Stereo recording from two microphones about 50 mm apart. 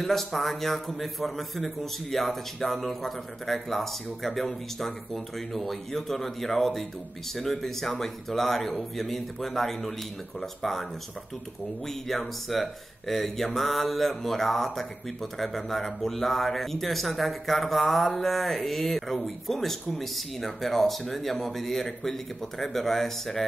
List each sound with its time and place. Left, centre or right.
0.0 s a man's voice: centre
11.9 s a man's voice: centre